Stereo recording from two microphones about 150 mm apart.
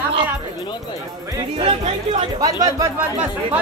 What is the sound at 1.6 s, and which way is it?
Music, 40° right (ahead or behind).